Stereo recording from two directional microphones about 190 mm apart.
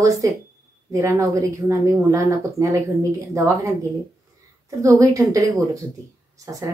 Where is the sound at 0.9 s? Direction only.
15° right (ahead or behind).